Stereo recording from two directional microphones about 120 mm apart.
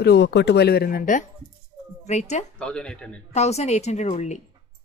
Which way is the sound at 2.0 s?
70° left (ahead or behind).